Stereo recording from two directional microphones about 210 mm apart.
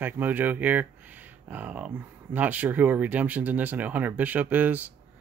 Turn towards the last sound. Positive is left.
turn(degrees=-10)  # may be behind; listen again after turning